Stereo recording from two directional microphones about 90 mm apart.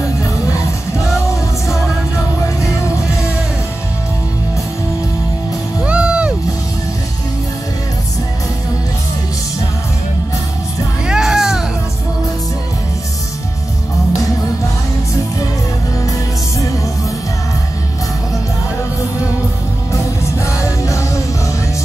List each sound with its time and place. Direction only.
0.2 s music: 35° left (ahead or behind)
5.9 s music: 10° right (ahead or behind)
11.1 s music: 5° right (ahead or behind)
16.1 s music: 35° left (ahead or behind)
19.9 s music: 35° left (ahead or behind)